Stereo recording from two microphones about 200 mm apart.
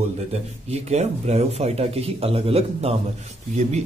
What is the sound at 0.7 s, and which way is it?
A man's voice, 35° right (ahead or behind).